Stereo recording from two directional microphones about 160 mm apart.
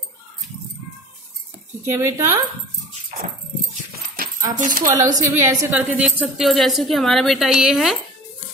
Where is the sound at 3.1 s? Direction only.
60° right (ahead or behind).